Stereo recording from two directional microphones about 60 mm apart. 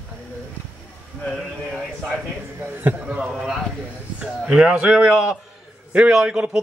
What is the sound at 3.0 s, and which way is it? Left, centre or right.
A man's voice, centre.